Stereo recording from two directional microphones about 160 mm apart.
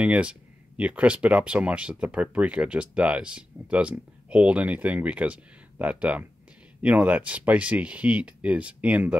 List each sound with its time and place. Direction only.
0.0 s speech: 5° right (ahead or behind)